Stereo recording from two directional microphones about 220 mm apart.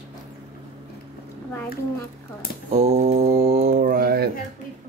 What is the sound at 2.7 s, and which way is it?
Mantra, 30° right (ahead or behind).